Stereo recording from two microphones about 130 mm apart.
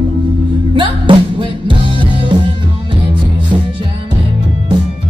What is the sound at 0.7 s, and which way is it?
Music, 40° right (ahead or behind).